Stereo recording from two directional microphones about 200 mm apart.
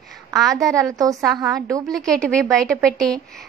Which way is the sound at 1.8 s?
Centre (ahead or behind).